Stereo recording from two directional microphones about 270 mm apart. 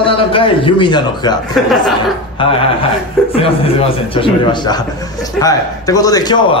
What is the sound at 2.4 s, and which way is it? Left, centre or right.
A man's voice, centre.